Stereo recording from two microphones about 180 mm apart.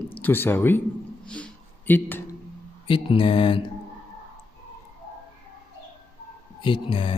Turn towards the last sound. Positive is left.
turn(degrees=30)  # may be behind; listen again after turning